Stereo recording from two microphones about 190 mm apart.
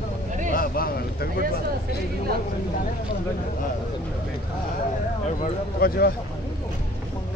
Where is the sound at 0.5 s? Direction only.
50° left (ahead or behind).